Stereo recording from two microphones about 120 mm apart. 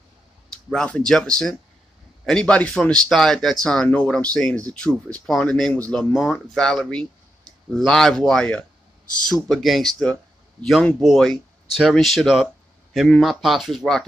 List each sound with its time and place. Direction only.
0.5 s speech: 5° left (ahead or behind)